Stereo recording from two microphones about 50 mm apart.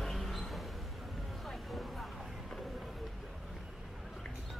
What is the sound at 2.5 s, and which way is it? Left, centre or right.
Vehicle, centre.